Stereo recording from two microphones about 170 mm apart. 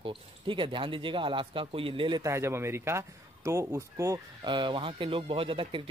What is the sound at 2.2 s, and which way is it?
Speech, 15° right (ahead or behind).